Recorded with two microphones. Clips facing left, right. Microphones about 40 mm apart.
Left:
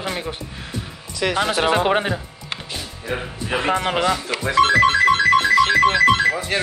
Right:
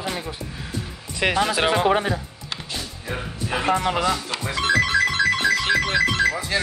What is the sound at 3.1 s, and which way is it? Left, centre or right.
Speech, centre.